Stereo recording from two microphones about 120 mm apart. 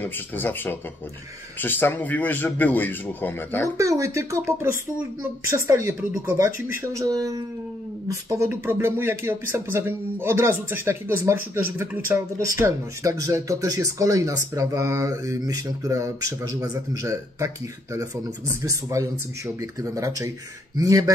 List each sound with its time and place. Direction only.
0.0 s a man's voice: 15° left (ahead or behind)
3.7 s speech: 25° right (ahead or behind)
18.7 s speech: 25° right (ahead or behind)